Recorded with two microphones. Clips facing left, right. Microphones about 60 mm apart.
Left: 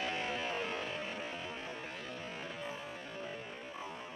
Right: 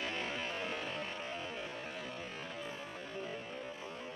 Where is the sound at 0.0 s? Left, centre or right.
Centre.